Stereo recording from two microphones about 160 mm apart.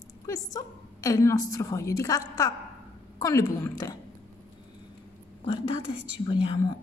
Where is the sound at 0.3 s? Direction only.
20° left (ahead or behind).